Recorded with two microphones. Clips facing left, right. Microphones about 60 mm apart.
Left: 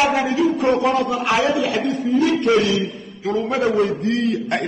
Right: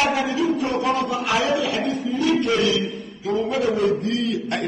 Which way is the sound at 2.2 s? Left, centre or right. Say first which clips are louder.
Left 1 dB; left.